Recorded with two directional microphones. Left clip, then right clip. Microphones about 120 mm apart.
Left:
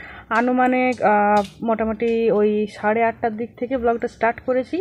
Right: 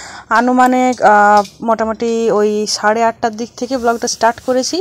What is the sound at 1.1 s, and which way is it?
Speech, 30° right (ahead or behind).